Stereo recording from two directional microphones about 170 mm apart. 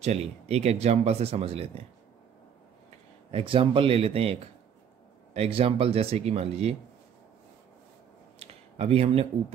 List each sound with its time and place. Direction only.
0.0 s speech: 40° right (ahead or behind)
3.3 s speech: 30° right (ahead or behind)
8.4 s a sound: 35° right (ahead or behind)